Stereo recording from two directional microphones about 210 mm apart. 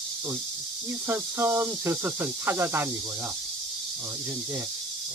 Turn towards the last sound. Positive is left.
turn(degrees=-15)  # may be behind; listen again after turning